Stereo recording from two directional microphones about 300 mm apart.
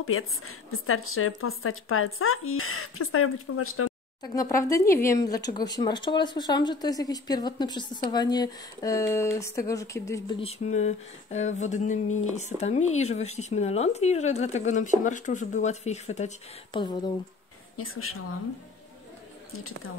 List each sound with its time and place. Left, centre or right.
0.0 s speech: left
4.2 s speech: centre
17.7 s speech: left